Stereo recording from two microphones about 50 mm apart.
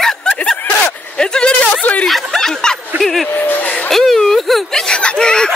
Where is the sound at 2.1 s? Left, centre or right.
Centre.